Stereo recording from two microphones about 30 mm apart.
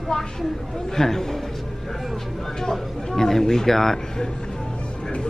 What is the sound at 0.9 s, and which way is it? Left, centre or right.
Speech, centre.